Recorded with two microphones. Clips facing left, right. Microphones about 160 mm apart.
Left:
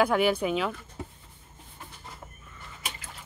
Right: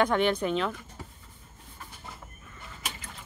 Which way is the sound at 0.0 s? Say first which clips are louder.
Left 1 dB; 5° left (ahead or behind).